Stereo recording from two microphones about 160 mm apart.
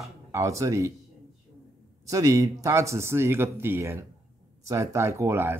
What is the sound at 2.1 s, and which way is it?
Speech, 20° right (ahead or behind).